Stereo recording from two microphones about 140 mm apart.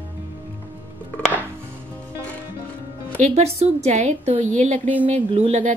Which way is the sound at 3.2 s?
50° right (ahead or behind).